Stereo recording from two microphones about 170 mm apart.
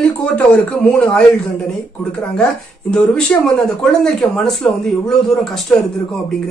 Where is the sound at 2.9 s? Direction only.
5° left (ahead or behind).